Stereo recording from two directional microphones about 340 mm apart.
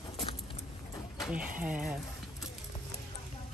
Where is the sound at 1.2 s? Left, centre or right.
Centre.